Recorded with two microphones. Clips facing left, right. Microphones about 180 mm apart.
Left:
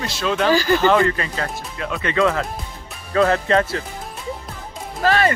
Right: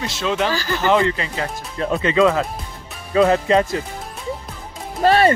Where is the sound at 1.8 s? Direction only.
35° right (ahead or behind).